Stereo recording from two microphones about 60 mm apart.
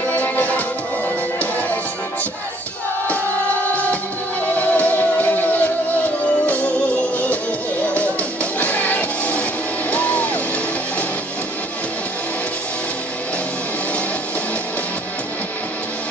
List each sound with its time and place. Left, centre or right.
0.1 s music: left
4.6 s music: left
7.9 s music: left